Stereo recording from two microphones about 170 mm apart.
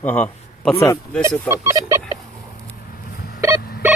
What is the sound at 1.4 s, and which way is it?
Speech, 15° right (ahead or behind).